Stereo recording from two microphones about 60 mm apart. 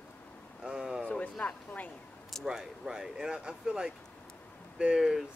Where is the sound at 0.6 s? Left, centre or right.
Centre.